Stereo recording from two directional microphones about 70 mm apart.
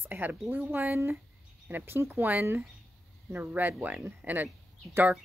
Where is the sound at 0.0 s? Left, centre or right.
Right.